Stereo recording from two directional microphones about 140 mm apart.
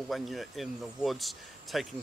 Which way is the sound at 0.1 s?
Centre (ahead or behind).